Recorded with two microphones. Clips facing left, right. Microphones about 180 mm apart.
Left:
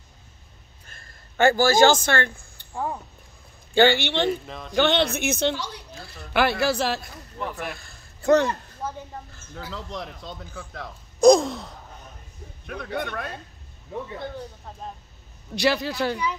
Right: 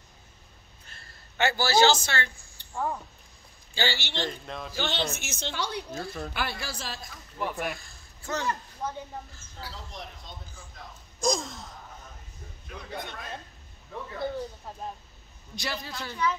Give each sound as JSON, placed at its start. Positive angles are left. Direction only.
{"t": 0.8, "sound": "a man's voice", "side_deg": 50}
{"t": 2.7, "sound": "speech", "side_deg": 15}
{"t": 3.7, "sound": "a woman's voice", "side_deg": 55}
{"t": 4.3, "sound": "speech", "side_deg": 0}
{"t": 4.7, "sound": "a woman's voice", "side_deg": 65}
{"t": 6.3, "sound": "speech", "side_deg": 70}
{"t": 7.3, "sound": "speech", "side_deg": 0}
{"t": 7.8, "sound": "a sound", "side_deg": 65}
{"t": 9.8, "sound": "a woman's voice", "side_deg": 90}
{"t": 15.5, "sound": "speech", "side_deg": 75}